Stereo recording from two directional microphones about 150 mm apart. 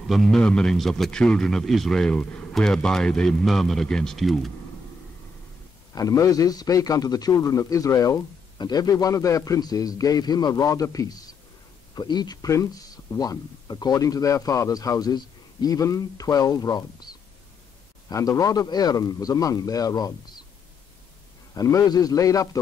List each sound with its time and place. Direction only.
0.1 s a man's voice: centre (ahead or behind)
5.9 s speech: 25° left (ahead or behind)
18.1 s speech: 20° left (ahead or behind)
21.5 s speech: 25° left (ahead or behind)